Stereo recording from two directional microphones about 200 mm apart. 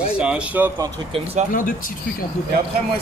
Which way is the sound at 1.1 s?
30° right (ahead or behind).